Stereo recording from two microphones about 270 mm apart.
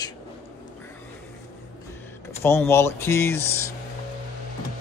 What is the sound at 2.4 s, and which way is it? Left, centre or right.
Speech, centre.